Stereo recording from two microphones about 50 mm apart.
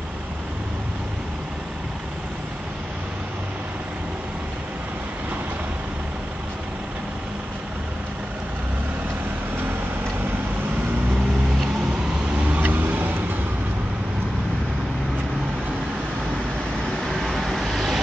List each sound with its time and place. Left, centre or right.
12.4 s vehicle: right
12.6 s vehicle: right
17.0 s vehicle: centre